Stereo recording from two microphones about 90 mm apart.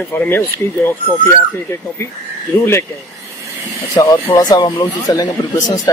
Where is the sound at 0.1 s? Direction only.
20° left (ahead or behind).